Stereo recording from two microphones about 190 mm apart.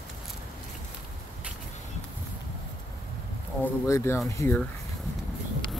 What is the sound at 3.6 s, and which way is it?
Speech, 15° left (ahead or behind).